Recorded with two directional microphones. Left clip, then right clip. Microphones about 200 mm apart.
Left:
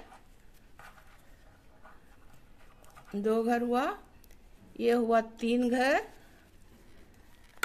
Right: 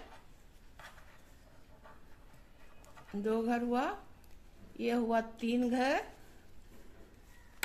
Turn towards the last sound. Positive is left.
turn(degrees=30)  # may be behind; listen again after turning